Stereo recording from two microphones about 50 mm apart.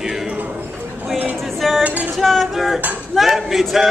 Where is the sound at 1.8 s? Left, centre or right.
Right.